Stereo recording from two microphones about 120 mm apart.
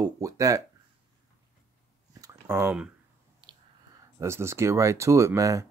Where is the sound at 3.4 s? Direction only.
35° right (ahead or behind).